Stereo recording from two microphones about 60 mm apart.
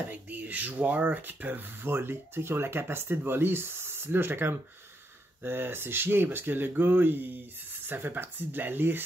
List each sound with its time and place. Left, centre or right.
0.1 s speech: right